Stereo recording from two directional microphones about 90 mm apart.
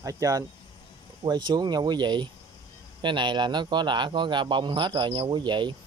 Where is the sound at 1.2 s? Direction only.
55° right (ahead or behind).